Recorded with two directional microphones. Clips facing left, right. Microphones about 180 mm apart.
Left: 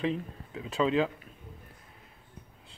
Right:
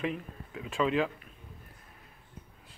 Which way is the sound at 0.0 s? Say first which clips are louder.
Left 3 dB; 30° left (ahead or behind).